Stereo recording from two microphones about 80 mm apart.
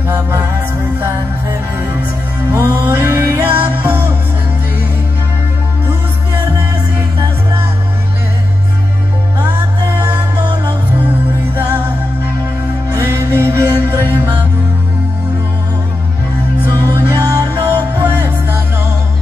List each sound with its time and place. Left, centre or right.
0.1 s music: right
2.5 s music: right
10.3 s music: right
12.9 s music: right
16.7 s music: right
17.1 s music: right
17.5 s music: right